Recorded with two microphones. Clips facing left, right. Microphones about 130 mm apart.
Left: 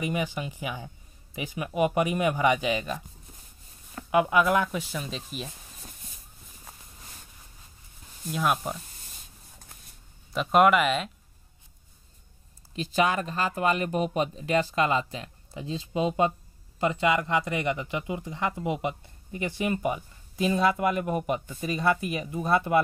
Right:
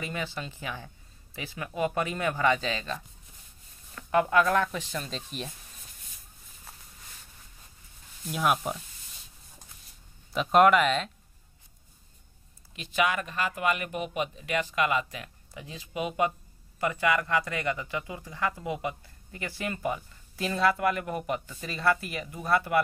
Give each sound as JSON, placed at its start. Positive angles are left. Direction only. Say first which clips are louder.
{"t": 0.0, "sound": "speech", "louder": "left 5 dB", "side_deg": 15}
{"t": 4.1, "sound": "speech", "louder": "left 1 dB", "side_deg": 10}
{"t": 8.3, "sound": "speech", "louder": "even", "side_deg": 0}
{"t": 10.3, "sound": "speech", "louder": "even", "side_deg": 0}
{"t": 12.7, "sound": "speech", "louder": "left 3 dB", "side_deg": 35}